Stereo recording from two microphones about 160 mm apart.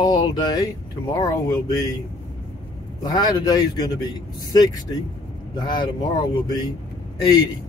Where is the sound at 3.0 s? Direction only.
25° left (ahead or behind).